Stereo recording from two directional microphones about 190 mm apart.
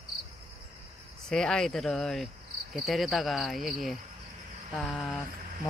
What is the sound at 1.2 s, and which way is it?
Speech, 5° left (ahead or behind).